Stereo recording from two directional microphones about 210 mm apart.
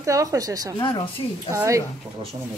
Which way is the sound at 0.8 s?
20° left (ahead or behind).